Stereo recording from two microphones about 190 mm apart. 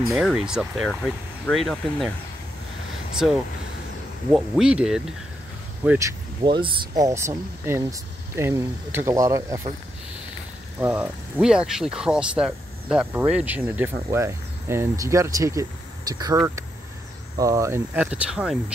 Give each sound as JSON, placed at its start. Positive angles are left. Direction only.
{"t": 0.1, "sound": "speech", "side_deg": -5}
{"t": 3.2, "sound": "speech", "side_deg": 0}
{"t": 5.9, "sound": "speech", "side_deg": -15}
{"t": 10.8, "sound": "speech", "side_deg": -10}